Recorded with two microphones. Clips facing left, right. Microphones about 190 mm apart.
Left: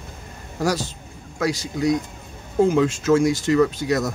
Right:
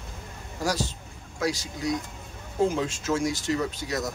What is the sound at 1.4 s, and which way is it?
A man's voice, 65° left (ahead or behind).